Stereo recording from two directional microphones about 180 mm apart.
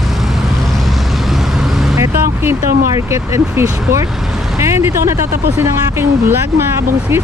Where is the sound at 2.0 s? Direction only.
15° right (ahead or behind).